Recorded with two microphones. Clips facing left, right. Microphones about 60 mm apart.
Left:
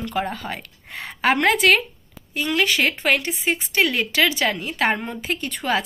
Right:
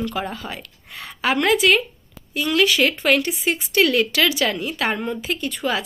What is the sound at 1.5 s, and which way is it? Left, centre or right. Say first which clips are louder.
Speech: even; left.